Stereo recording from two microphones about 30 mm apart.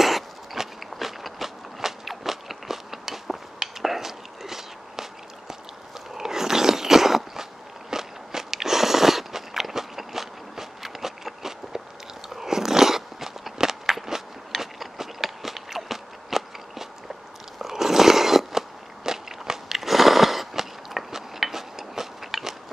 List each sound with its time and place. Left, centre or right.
0.0 s a sound: centre
0.7 s biting: centre
3.8 s walk: centre
6.1 s roar: centre
7.9 s walk: centre
12.4 s biting: centre
19.0 s a sound: centre